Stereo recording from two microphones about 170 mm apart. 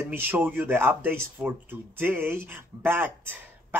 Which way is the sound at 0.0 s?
10° right (ahead or behind).